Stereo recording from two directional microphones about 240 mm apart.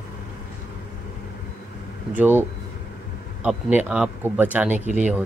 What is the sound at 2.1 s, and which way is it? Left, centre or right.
Speech, centre.